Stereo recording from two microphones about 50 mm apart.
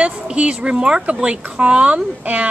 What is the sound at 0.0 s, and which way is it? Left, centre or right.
Speech, right.